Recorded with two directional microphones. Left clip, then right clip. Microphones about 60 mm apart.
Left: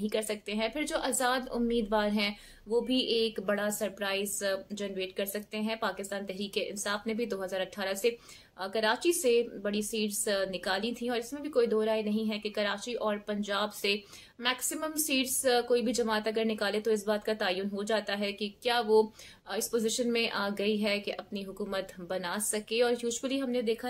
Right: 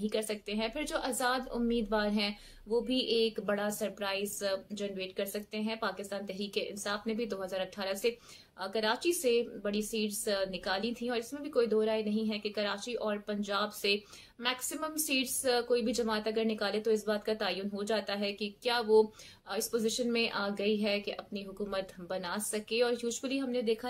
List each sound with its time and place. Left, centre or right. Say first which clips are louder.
0.0 s a woman's voice: left 2 dB; left